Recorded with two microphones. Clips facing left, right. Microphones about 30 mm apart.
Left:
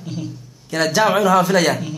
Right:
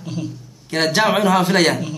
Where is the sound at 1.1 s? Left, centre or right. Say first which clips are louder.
Left 1 dB; right.